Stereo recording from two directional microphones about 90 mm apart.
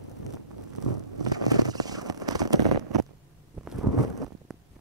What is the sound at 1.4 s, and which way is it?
Clip-clop, 45° right (ahead or behind).